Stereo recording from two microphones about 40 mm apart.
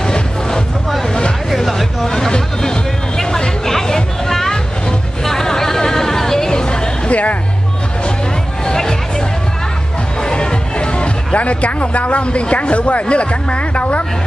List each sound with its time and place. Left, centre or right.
0.0 s music: centre
1.5 s a sound: centre
5.2 s hubbub: centre
6.5 s a sound: left
7.1 s music: left
8.6 s music: centre
10.2 s music: left
13.1 s speech: left